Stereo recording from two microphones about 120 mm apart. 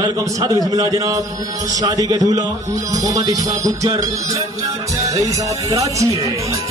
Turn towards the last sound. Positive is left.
turn(degrees=-25)  # may be behind; listen again after turning